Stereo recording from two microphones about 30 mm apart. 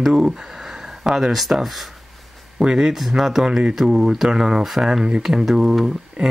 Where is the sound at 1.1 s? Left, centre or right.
Centre.